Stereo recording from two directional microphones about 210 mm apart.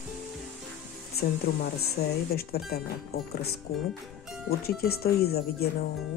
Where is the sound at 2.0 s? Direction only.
50° left (ahead or behind).